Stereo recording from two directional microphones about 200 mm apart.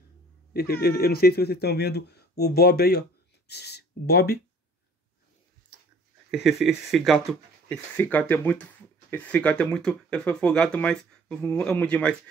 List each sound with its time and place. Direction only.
0.5 s speech: 50° left (ahead or behind)
6.3 s speech: centre (ahead or behind)